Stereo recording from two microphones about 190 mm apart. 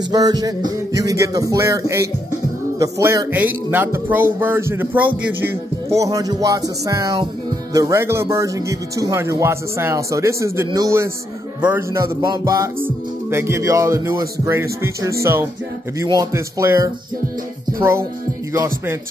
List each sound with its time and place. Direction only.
0.1 s speech: 20° right (ahead or behind)